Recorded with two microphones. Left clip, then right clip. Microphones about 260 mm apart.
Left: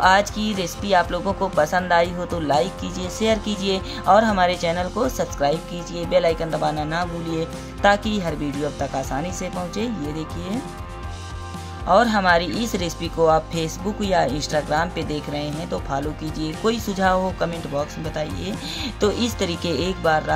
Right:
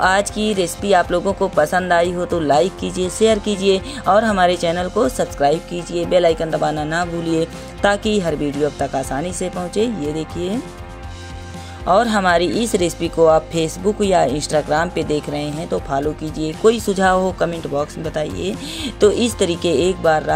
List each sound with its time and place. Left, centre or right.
0.0 s speech: right
11.8 s speech: right